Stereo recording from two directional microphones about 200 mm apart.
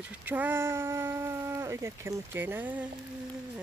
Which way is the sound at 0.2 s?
10° right (ahead or behind).